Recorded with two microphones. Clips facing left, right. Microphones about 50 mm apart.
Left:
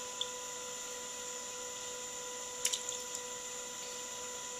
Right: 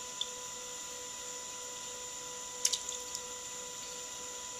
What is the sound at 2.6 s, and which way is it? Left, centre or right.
Water, centre.